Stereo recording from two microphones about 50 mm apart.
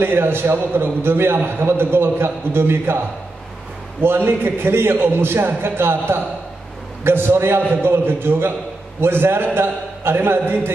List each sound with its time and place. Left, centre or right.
0.0 s a man's voice: right